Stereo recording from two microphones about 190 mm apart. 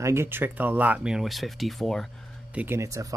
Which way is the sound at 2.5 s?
10° right (ahead or behind).